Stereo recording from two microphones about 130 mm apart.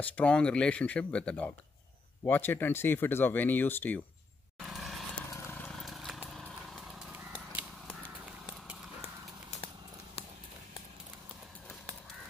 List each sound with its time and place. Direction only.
0.0 s speech: 10° left (ahead or behind)
4.6 s vehicle: centre (ahead or behind)
5.1 s vehicle: 15° left (ahead or behind)
5.7 s vehicle: centre (ahead or behind)
7.1 s a sound: 10° right (ahead or behind)